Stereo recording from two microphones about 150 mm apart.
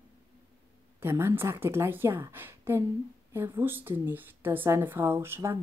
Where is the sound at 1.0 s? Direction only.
15° right (ahead or behind).